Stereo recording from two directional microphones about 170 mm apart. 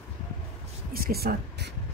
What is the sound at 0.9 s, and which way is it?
Speech, 65° right (ahead or behind).